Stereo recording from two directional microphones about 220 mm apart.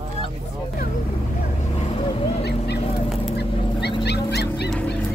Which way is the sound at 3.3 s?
50° left (ahead or behind).